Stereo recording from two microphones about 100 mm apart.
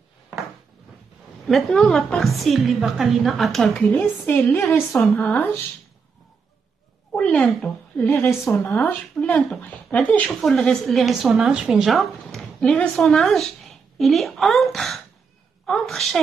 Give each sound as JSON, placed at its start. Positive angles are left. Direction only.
{"t": 1.4, "sound": "a woman's voice", "side_deg": 5}
{"t": 3.7, "sound": "a woman's voice", "side_deg": 15}
{"t": 7.2, "sound": "speech", "side_deg": 5}
{"t": 8.1, "sound": "a woman's voice", "side_deg": 25}
{"t": 9.3, "sound": "a woman's voice", "side_deg": 5}
{"t": 9.8, "sound": "a woman's voice", "side_deg": 15}